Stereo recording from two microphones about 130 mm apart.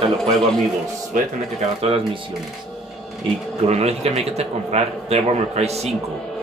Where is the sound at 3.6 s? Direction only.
55° right (ahead or behind).